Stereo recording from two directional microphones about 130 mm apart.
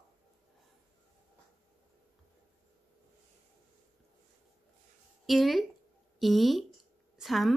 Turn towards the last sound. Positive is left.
turn(degrees=0)  # may be behind; listen again after turning